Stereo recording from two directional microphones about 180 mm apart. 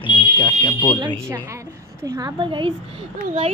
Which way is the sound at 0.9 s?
25° right (ahead or behind).